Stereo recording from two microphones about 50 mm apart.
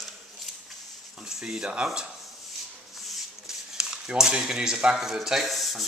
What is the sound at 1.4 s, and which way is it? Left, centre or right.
Speech, centre.